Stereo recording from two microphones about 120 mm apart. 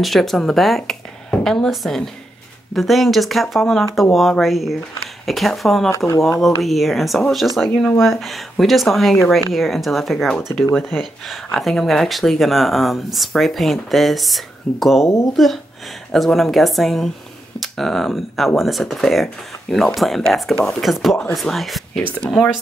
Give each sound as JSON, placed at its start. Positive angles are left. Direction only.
{"t": 0.0, "sound": "speech", "side_deg": 0}
{"t": 5.9, "sound": "speech", "side_deg": 25}
{"t": 6.4, "sound": "speech", "side_deg": 0}